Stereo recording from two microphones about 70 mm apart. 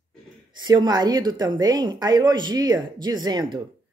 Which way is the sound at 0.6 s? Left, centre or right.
Right.